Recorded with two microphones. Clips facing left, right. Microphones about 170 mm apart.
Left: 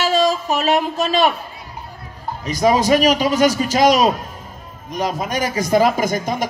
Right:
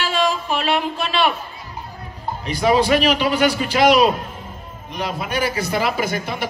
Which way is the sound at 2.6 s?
40° left (ahead or behind).